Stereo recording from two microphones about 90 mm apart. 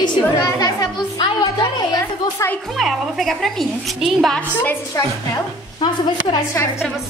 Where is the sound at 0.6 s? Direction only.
50° left (ahead or behind).